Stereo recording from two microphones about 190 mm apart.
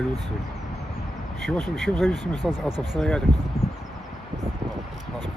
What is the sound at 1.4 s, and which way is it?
Speech, centre (ahead or behind).